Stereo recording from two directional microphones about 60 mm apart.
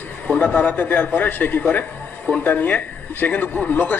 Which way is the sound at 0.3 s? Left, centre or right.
Left.